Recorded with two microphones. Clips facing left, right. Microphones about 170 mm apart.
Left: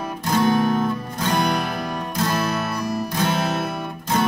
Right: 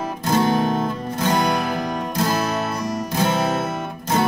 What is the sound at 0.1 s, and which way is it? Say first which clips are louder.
Music: even; 25° right (ahead or behind).